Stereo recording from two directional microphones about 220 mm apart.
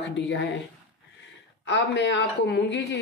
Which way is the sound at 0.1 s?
55° left (ahead or behind).